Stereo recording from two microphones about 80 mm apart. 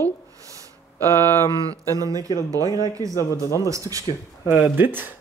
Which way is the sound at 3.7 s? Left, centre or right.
Right.